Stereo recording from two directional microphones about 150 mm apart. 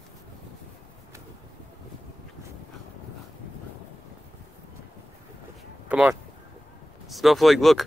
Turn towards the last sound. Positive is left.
turn(degrees=0)  # may be behind; listen again after turning